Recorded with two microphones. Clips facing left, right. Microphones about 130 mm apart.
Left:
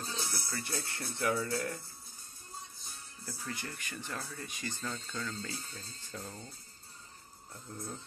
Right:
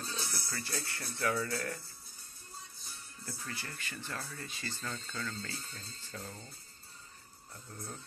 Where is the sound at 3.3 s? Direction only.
15° left (ahead or behind).